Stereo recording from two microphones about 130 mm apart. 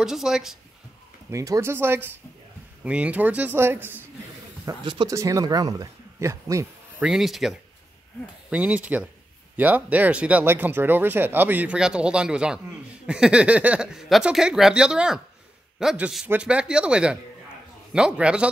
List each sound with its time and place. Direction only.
0.0 s speech: 5° right (ahead or behind)
1.3 s speech: 25° right (ahead or behind)
4.6 s speech: 35° right (ahead or behind)
7.0 s speech: 5° right (ahead or behind)